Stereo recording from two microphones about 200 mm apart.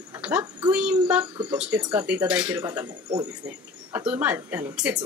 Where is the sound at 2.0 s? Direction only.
5° right (ahead or behind).